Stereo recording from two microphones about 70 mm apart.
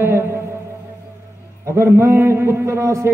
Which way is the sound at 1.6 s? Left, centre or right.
Right.